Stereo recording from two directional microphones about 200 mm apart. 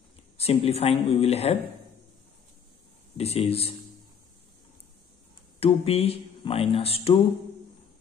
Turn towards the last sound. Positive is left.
turn(degrees=30)  # may be behind; listen again after turning